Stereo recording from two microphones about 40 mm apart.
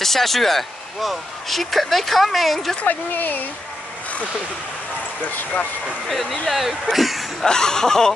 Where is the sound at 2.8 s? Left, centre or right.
Left.